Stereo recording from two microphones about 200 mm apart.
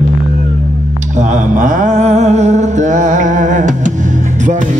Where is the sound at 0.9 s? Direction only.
40° right (ahead or behind).